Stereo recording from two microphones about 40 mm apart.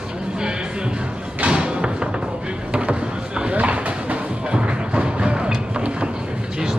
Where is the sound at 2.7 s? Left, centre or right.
Right.